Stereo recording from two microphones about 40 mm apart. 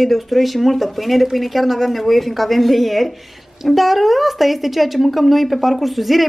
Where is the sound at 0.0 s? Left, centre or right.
Centre.